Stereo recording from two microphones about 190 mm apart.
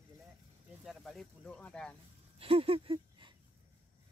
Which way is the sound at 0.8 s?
Centre (ahead or behind).